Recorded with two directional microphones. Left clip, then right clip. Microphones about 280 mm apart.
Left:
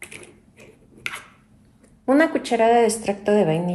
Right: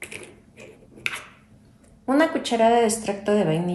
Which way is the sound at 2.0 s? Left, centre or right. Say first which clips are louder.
Left 2 dB; left.